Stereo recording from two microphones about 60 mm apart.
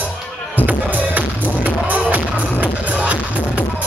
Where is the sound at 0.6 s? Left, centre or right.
Right.